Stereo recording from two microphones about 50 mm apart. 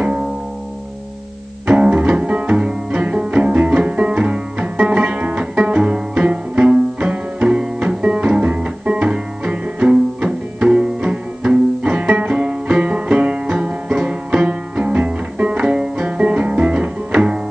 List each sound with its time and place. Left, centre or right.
1.7 s music: right